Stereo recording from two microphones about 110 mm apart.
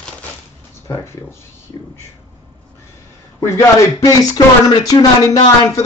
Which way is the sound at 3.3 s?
25° left (ahead or behind).